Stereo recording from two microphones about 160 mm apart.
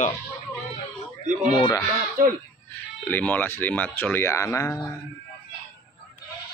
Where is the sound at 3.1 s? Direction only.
10° left (ahead or behind).